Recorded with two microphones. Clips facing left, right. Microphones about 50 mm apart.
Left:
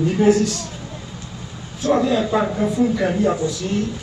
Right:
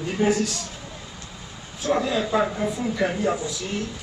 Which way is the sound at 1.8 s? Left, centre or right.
Centre.